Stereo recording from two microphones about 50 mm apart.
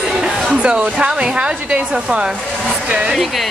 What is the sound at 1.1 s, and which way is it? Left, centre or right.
A woman's voice, centre.